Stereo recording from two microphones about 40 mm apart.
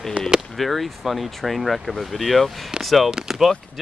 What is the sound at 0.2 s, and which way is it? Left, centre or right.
Speech, right.